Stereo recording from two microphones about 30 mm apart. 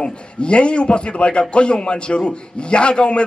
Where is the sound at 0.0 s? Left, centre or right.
Left.